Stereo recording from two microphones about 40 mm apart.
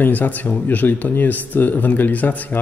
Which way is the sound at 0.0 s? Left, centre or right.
Left.